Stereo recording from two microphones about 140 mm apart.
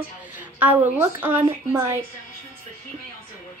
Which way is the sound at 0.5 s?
15° right (ahead or behind).